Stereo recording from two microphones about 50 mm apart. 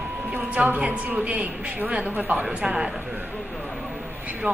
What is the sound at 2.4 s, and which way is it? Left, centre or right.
Speech, centre.